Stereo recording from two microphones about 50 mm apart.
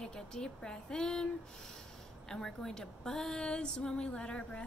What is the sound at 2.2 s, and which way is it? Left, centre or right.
A woman's voice, centre.